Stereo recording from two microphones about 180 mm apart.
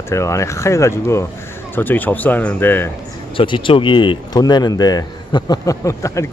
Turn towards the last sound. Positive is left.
turn(degrees=15)  # may be behind; listen again after turning